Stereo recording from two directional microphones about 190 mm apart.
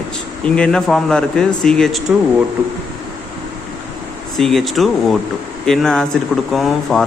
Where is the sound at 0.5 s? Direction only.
5° left (ahead or behind).